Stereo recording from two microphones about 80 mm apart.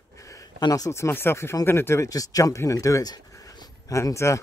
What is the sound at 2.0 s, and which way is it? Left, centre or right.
Speech, left.